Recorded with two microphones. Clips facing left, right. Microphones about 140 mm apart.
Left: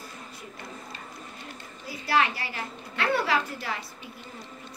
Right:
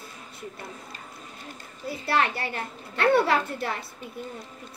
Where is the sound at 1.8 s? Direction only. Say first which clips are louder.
Even; 60° right (ahead or behind).